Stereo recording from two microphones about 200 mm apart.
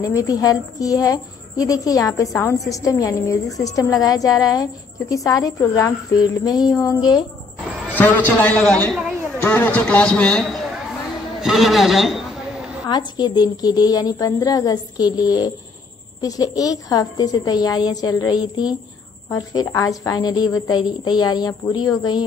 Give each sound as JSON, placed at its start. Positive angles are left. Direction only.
{"t": 0.0, "sound": "a woman's voice", "side_deg": 15}
{"t": 7.9, "sound": "a man's voice", "side_deg": 10}
{"t": 12.8, "sound": "a woman's voice", "side_deg": 20}